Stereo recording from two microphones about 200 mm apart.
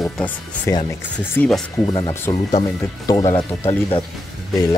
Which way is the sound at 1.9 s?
20° left (ahead or behind).